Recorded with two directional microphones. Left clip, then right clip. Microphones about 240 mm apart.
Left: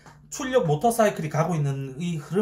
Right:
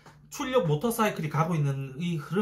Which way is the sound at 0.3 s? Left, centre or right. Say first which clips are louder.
Left 3 dB; centre.